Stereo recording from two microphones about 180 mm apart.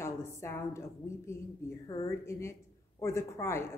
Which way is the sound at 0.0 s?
15° left (ahead or behind).